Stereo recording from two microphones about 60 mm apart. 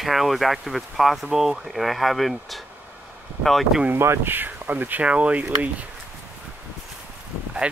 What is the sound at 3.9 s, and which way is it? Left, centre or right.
Speech, right.